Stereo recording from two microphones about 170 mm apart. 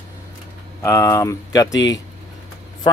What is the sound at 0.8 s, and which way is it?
Speech, 15° left (ahead or behind).